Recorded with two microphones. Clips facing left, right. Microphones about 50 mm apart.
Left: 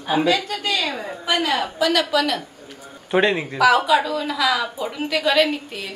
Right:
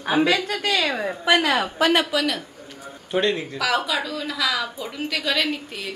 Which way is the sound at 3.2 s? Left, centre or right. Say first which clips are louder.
Left 8 dB; centre.